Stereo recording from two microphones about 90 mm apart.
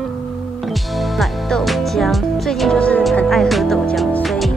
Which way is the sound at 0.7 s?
Centre (ahead or behind).